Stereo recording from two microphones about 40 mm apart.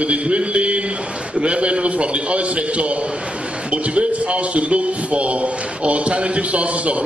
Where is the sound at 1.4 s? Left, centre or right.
Right.